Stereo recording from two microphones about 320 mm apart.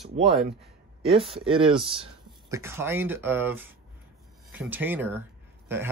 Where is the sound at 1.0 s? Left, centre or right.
Centre.